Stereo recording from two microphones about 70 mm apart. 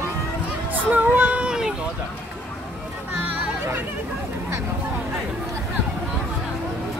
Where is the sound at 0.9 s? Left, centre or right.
Right.